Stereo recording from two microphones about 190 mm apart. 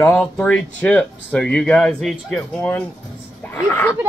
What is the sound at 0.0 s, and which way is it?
Speech, 5° left (ahead or behind).